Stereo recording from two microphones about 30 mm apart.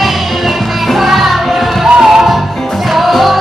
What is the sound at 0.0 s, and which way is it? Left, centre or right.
Music, centre.